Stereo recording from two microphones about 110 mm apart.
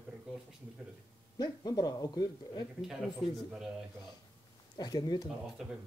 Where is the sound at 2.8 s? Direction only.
5° right (ahead or behind).